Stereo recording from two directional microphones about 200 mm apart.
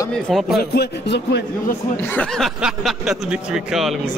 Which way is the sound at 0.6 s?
55° left (ahead or behind).